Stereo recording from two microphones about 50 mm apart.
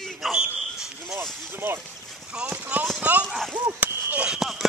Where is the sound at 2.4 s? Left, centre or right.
Right.